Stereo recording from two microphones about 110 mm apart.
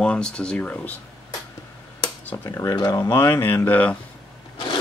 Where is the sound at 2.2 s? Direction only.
20° left (ahead or behind).